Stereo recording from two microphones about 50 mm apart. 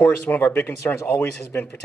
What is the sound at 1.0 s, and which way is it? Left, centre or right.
Speech, left.